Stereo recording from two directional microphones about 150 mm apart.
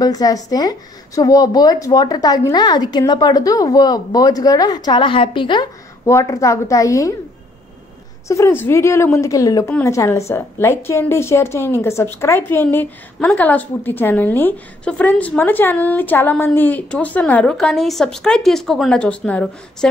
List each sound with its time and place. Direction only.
0.0 s a woman's voice: 25° left (ahead or behind)
6.0 s a woman's voice: 20° left (ahead or behind)
8.3 s a woman's voice: 20° left (ahead or behind)